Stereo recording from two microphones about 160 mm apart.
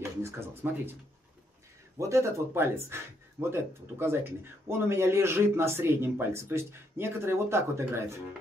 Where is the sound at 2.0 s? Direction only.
20° right (ahead or behind).